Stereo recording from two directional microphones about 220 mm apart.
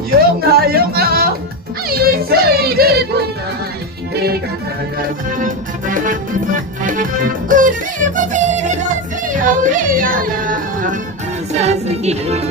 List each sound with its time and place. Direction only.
0.1 s a sound: 45° right (ahead or behind)
1.9 s music: 45° right (ahead or behind)
5.4 s music: 35° right (ahead or behind)